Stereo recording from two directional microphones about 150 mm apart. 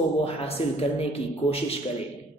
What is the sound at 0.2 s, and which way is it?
Speech, 40° left (ahead or behind).